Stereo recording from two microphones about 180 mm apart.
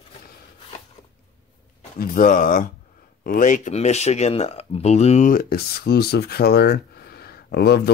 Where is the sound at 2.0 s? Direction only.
50° left (ahead or behind).